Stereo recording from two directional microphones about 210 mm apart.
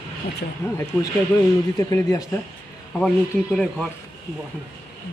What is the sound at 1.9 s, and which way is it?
Speech, 15° left (ahead or behind).